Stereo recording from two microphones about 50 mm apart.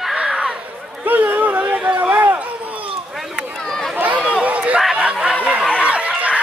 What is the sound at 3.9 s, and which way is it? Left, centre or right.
Run, right.